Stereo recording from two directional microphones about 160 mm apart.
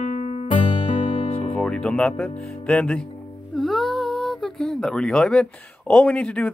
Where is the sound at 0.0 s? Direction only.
50° left (ahead or behind).